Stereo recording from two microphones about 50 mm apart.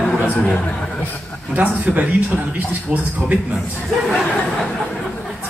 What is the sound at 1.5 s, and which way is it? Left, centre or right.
A man's voice, right.